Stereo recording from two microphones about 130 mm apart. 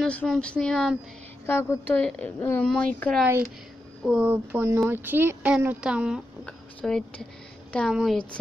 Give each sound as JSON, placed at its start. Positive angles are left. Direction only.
{"t": 0.0, "sound": "speech", "side_deg": 10}
{"t": 1.4, "sound": "a woman's voice", "side_deg": 20}
{"t": 2.0, "sound": "speech", "side_deg": 10}
{"t": 4.0, "sound": "speech", "side_deg": -10}
{"t": 6.4, "sound": "speech", "side_deg": 5}